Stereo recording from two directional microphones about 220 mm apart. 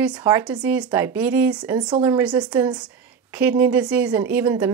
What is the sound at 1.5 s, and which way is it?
A woman's voice, 20° right (ahead or behind).